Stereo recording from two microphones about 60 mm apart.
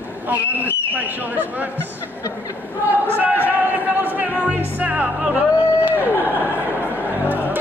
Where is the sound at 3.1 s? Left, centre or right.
Right.